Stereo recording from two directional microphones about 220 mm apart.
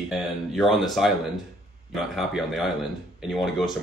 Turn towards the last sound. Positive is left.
turn(degrees=0)  # may be behind; listen again after turning